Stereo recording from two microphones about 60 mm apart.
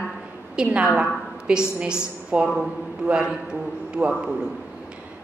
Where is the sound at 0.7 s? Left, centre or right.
Centre.